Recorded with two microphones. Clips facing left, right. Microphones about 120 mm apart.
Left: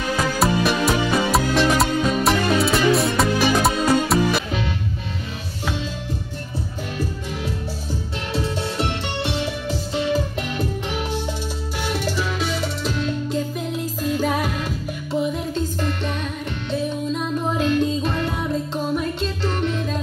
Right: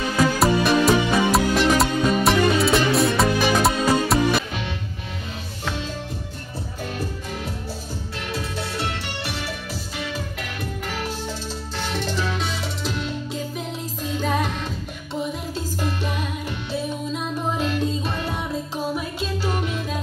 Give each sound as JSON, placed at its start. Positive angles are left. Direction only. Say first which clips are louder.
{"t": 0.4, "sound": "music", "louder": "even", "side_deg": 0}
{"t": 8.3, "sound": "music", "louder": "left 5 dB", "side_deg": 25}
{"t": 11.8, "sound": "music", "louder": "left 2 dB", "side_deg": 10}
{"t": 15.5, "sound": "music", "louder": "left 3 dB", "side_deg": -5}
{"t": 17.6, "sound": "music", "louder": "left 4 dB", "side_deg": -5}